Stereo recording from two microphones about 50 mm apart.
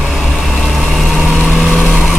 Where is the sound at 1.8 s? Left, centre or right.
Left.